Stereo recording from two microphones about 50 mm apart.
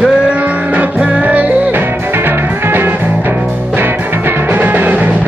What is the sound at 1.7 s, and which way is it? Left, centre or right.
Music, right.